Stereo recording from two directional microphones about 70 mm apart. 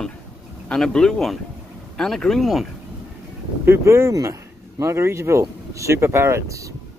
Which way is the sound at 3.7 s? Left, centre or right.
Right.